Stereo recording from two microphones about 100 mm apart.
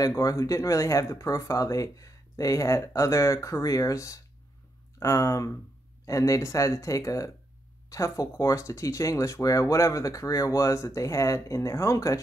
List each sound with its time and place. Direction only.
0.2 s speech: 35° left (ahead or behind)